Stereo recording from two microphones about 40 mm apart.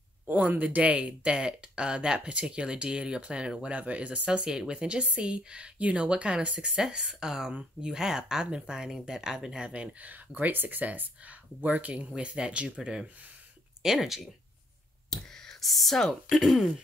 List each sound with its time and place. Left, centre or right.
0.3 s speech: right
3.7 s speech: right; by 9.7 s centre
9.7 s speech: right
12.2 s speech: right
13.8 s speech: centre
15.0 s whispering: centre
15.6 s speech: centre
16.3 s speech: centre